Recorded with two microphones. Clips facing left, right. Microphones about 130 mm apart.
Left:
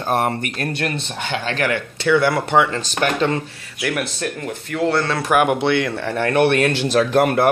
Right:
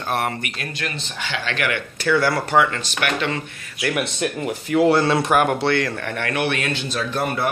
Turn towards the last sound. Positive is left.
turn(degrees=70)  # may be behind; listen again after turning